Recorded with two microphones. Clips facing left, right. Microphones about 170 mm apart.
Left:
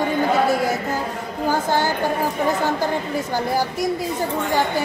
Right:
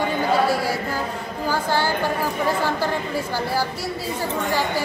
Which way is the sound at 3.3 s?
20° left (ahead or behind).